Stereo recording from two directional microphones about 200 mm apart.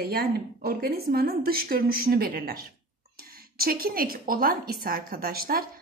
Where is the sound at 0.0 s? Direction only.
50° right (ahead or behind).